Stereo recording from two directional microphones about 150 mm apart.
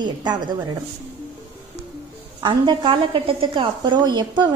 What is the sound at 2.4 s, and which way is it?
A woman's voice, 30° right (ahead or behind).